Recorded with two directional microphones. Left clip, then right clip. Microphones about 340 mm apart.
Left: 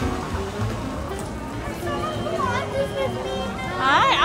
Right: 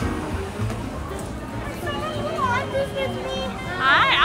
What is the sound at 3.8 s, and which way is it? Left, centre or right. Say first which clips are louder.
Music: right 1 dB; centre.